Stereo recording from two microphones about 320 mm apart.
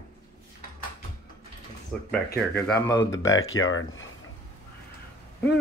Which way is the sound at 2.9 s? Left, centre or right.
Left.